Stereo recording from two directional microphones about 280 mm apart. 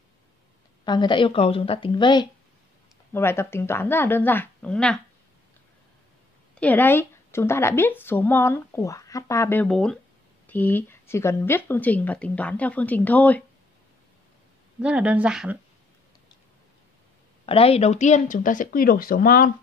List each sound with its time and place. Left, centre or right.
0.8 s speech: centre
6.5 s speech: centre
14.8 s speech: centre
17.5 s speech: left